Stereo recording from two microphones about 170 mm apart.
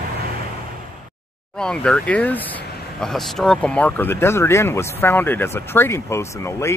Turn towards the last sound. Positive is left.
turn(degrees=15)  # may be behind; listen again after turning